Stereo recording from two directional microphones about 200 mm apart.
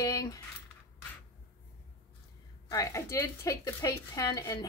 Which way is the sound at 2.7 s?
15° left (ahead or behind).